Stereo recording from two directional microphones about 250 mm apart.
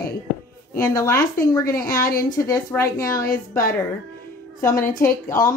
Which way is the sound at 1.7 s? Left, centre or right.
Left.